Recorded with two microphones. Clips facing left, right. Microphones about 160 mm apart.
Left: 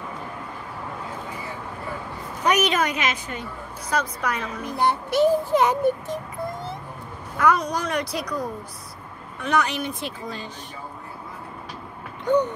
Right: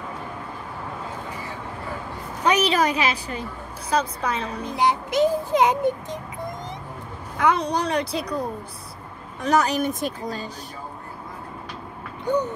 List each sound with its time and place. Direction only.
2.4 s a woman's voice: 30° right (ahead or behind)
4.7 s a child's voice: 15° right (ahead or behind)
7.3 s a woman's voice: 25° right (ahead or behind)